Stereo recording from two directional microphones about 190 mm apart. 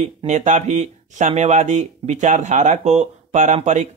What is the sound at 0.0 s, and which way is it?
Speech, 35° right (ahead or behind).